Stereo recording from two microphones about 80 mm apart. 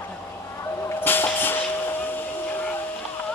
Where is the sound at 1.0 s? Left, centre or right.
Left.